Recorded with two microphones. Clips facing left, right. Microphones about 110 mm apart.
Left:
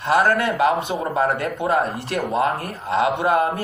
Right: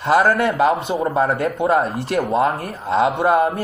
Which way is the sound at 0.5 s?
35° right (ahead or behind).